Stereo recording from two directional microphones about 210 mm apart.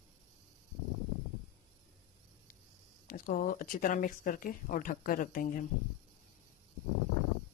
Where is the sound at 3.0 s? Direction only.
40° left (ahead or behind).